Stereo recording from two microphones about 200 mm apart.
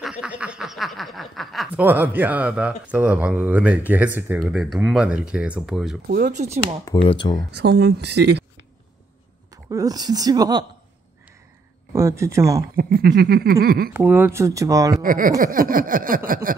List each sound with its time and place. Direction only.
0.0 s speech: 5° right (ahead or behind)
6.0 s speech: 45° right (ahead or behind)
7.0 s speech: 25° left (ahead or behind)
7.5 s speech: 55° right (ahead or behind)
9.5 s speech: 15° right (ahead or behind)
11.9 s speech: 15° right (ahead or behind)
12.7 s a sound: 50° right (ahead or behind)
13.9 s speech: 10° right (ahead or behind)
15.0 s a sound: 45° right (ahead or behind)